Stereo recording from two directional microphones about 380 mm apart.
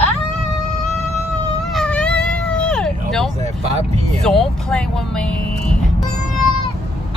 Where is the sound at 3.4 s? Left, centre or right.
Centre.